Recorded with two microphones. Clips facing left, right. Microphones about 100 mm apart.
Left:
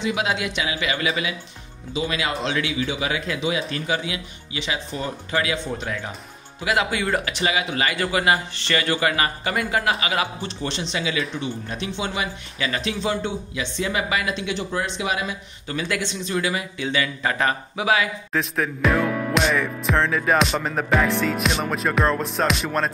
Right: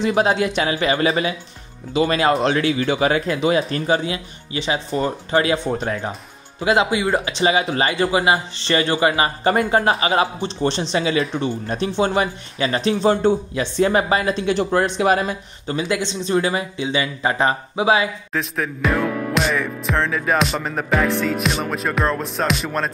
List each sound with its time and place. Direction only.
0.0 s speech: 40° right (ahead or behind)
6.6 s a man's voice: 25° right (ahead or behind)
9.5 s speech: 35° right (ahead or behind)
14.6 s speech: 55° right (ahead or behind)
15.6 s a man's voice: 25° right (ahead or behind)
18.3 s music: centre (ahead or behind)